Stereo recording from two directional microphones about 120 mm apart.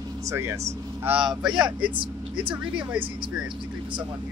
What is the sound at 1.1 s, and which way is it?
Speech, 5° right (ahead or behind).